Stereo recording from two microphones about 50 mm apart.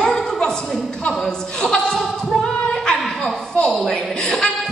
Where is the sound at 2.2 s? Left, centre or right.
Centre.